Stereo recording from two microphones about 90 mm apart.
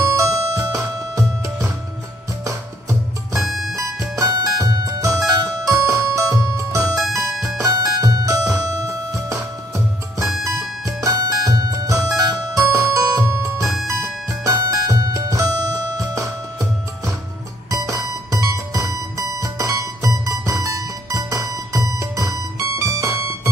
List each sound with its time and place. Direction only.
0.0 s music: 35° right (ahead or behind)
3.4 s music: centre (ahead or behind)
4.2 s music: 40° right (ahead or behind)
10.2 s music: centre (ahead or behind)
10.9 s music: 35° right (ahead or behind)
17.6 s music: 40° right (ahead or behind)